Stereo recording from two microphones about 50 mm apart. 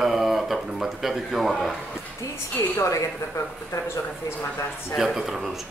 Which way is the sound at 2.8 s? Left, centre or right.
Left.